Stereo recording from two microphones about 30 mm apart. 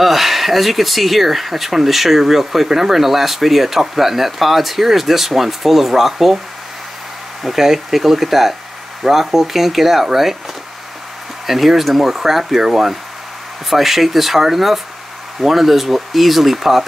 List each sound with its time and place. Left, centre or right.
0.0 s speech: centre
7.4 s speech: centre
11.4 s speech: centre